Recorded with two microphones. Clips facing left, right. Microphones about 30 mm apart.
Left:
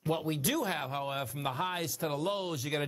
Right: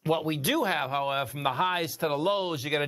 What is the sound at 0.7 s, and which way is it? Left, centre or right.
Speech, centre.